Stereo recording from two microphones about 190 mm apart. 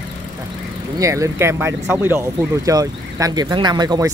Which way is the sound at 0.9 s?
15° right (ahead or behind).